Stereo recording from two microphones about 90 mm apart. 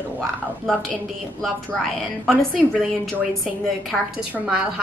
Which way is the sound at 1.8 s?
5° left (ahead or behind).